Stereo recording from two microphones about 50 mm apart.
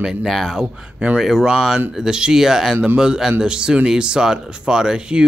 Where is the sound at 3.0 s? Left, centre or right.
Centre.